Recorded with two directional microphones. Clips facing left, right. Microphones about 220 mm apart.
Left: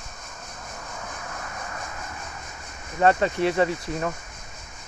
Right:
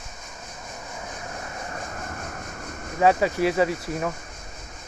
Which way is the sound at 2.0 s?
50° right (ahead or behind).